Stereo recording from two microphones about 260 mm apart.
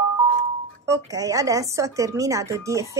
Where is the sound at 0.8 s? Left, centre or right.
Centre.